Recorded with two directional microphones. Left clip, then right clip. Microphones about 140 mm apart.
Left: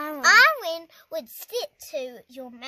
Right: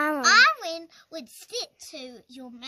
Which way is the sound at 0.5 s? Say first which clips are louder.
Left 3 dB; 90° left.